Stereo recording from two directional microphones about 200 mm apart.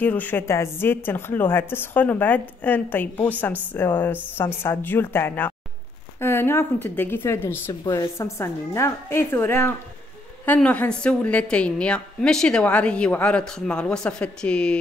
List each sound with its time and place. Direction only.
0.0 s a woman's voice: 10° left (ahead or behind)